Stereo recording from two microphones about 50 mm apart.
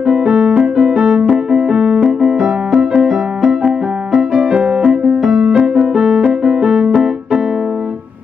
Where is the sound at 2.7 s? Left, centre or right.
Centre.